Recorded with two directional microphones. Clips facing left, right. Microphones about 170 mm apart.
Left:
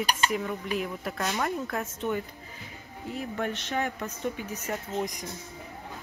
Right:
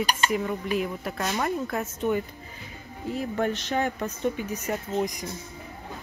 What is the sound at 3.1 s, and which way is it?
Speech, 35° right (ahead or behind).